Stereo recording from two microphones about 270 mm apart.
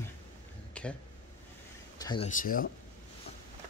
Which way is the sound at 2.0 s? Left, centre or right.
Centre.